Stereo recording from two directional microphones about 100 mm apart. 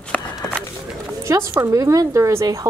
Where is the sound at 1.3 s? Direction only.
30° right (ahead or behind).